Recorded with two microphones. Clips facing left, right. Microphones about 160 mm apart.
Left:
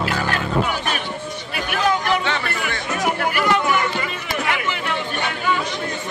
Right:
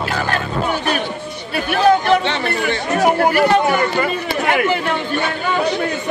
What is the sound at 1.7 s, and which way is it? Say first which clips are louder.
Chatter: right 7 dB; 30° right (ahead or behind).